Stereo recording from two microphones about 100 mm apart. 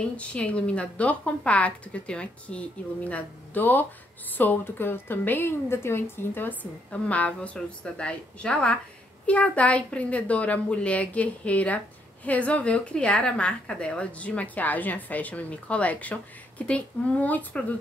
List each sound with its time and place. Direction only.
0.3 s a woman's voice: 10° left (ahead or behind)